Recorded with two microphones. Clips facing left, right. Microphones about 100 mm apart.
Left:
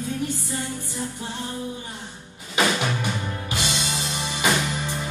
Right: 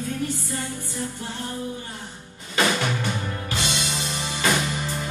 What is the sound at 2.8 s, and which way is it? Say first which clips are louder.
Music: even; 15° left (ahead or behind).